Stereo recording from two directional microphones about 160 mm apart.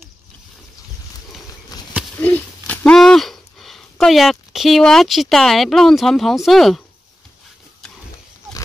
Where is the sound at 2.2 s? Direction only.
10° left (ahead or behind).